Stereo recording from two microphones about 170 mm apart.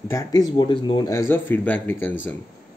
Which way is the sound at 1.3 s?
10° left (ahead or behind).